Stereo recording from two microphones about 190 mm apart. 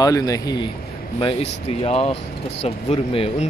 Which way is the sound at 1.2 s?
35° left (ahead or behind).